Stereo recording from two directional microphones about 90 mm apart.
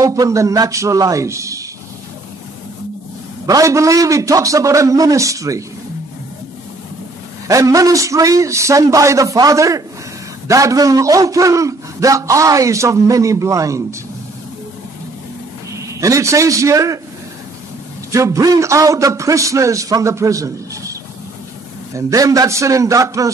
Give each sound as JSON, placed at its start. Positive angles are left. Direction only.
{"t": 0.0, "sound": "a man's voice", "side_deg": -40}
{"t": 3.4, "sound": "a man's voice", "side_deg": -40}
{"t": 7.4, "sound": "a man's voice", "side_deg": -40}
{"t": 15.7, "sound": "a man's voice", "side_deg": -35}
{"t": 18.1, "sound": "a man's voice", "side_deg": -35}
{"t": 21.9, "sound": "a man's voice", "side_deg": -40}